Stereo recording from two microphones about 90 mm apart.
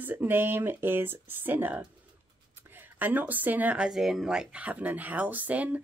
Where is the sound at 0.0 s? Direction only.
20° right (ahead or behind).